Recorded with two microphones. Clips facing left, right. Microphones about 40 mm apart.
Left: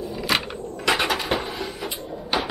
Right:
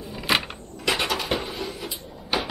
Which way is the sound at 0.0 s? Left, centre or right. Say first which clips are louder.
Even; centre.